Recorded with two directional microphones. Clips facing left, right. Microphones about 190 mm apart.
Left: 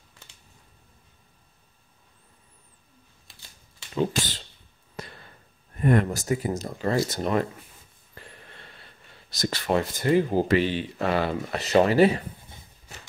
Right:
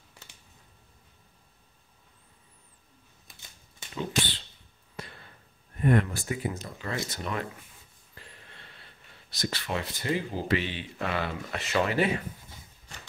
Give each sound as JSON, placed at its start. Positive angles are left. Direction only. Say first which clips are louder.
{"t": 5.0, "sound": "a sound", "louder": "left 3 dB", "side_deg": 40}
{"t": 5.8, "sound": "speech", "louder": "left 3 dB", "side_deg": 40}
{"t": 9.3, "sound": "speech", "louder": "left 7 dB", "side_deg": 45}